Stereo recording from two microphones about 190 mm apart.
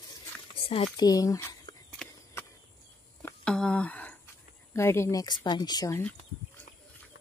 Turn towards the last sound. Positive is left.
turn(degrees=20)  # may be behind; listen again after turning